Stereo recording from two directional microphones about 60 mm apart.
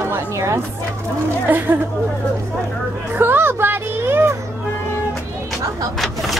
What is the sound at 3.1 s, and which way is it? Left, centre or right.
Speech, right.